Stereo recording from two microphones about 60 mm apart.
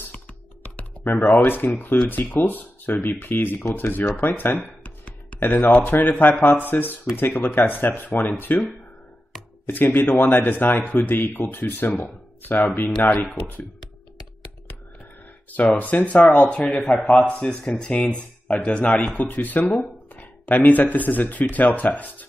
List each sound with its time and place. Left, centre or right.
1.2 s speech: left
9.7 s speech: left
15.5 s speech: left